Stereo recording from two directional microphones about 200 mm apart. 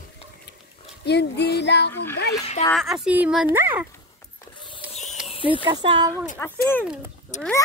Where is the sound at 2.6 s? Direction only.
Centre (ahead or behind).